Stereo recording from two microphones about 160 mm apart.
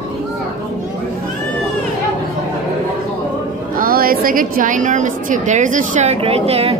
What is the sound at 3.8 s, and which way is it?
A woman's voice, 65° right (ahead or behind).